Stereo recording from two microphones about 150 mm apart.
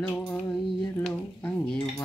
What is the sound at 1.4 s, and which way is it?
Speech, 5° left (ahead or behind).